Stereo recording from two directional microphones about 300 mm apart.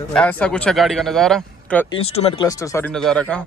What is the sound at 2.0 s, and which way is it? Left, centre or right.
Speech, centre.